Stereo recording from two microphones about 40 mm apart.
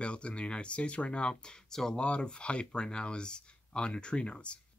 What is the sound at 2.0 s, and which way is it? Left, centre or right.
Speech, left.